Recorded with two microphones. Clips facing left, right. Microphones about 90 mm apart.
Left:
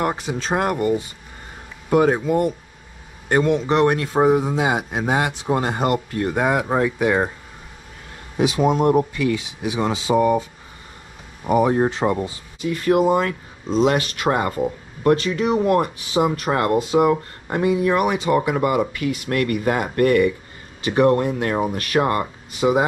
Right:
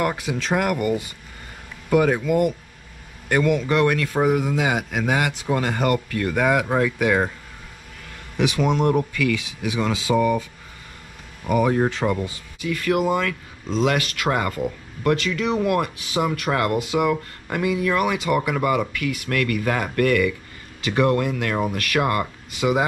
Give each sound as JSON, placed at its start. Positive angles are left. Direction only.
{"t": 0.0, "sound": "speech", "side_deg": 25}
{"t": 9.1, "sound": "speech", "side_deg": 25}
{"t": 11.4, "sound": "speech", "side_deg": 25}